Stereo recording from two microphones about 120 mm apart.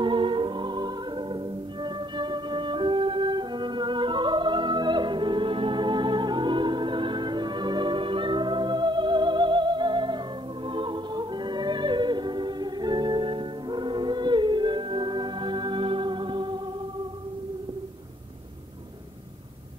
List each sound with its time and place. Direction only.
0.0 s music: 45° right (ahead or behind)